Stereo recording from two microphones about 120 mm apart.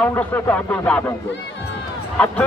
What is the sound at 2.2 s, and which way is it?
Speech, 10° left (ahead or behind).